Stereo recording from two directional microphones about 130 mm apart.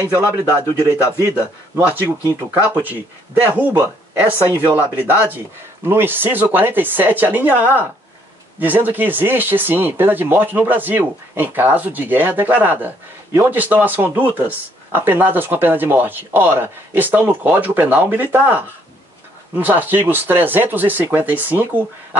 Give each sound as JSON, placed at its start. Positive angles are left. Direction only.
{"t": 0.4, "sound": "speech", "side_deg": -20}